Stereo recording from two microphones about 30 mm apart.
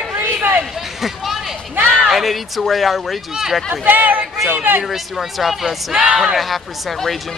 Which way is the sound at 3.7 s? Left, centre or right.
Right.